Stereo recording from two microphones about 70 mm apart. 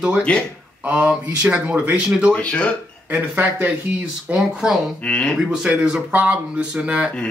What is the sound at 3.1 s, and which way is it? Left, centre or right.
Speech, right.